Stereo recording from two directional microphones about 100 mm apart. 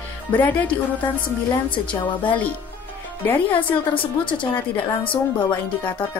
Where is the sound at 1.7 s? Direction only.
55° left (ahead or behind).